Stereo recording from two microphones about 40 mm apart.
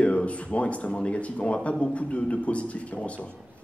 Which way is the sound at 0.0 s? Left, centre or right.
Left.